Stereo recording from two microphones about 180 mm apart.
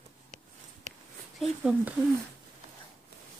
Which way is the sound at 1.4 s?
5° right (ahead or behind).